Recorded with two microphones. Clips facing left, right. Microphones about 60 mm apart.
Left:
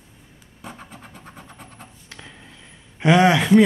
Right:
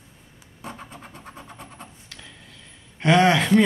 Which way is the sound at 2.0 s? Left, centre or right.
Left.